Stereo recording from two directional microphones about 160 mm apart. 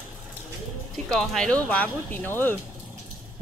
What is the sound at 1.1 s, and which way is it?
Speech, centre (ahead or behind).